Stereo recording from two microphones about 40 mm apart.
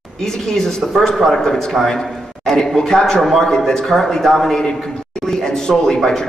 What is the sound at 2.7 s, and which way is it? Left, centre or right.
A man's voice, centre.